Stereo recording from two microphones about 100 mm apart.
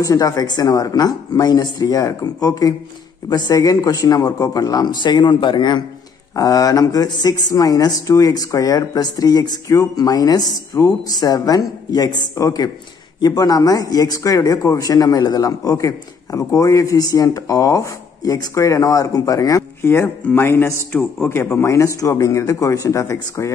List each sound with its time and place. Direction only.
0.0 s speech: 35° left (ahead or behind)
6.3 s speech: 35° left (ahead or behind)